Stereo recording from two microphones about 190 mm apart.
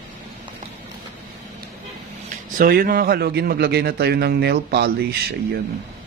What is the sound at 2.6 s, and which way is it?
A man's voice, 50° right (ahead or behind).